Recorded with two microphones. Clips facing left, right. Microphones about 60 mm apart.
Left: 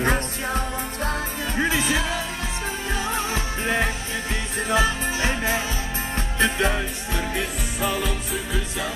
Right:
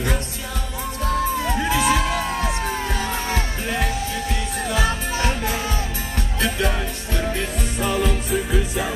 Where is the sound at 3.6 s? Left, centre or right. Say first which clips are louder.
Left 2 dB; left.